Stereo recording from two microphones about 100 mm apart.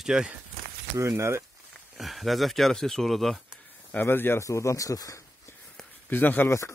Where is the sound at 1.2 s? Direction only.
30° right (ahead or behind).